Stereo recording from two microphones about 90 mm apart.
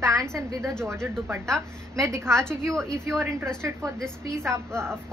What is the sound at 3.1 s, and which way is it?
A woman's voice, 30° right (ahead or behind).